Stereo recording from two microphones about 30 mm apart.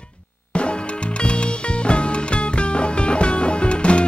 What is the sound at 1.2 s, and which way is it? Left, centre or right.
Music, left.